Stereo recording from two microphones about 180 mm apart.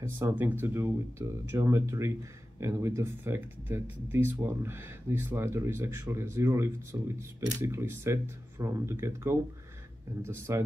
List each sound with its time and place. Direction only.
0.0 s speech: 10° right (ahead or behind)